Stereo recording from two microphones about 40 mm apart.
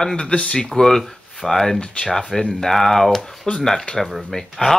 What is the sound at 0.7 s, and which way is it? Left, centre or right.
Speech, centre.